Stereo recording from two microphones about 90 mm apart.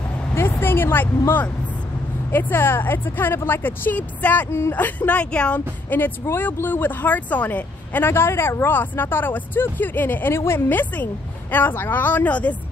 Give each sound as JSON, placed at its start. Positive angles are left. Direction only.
{"t": 0.3, "sound": "speech", "side_deg": 25}